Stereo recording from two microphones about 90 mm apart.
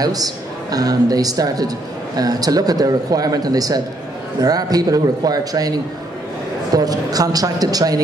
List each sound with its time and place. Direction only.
0.0 s speech: 45° right (ahead or behind)